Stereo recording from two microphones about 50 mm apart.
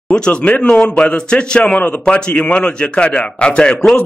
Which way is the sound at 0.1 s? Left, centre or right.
Centre.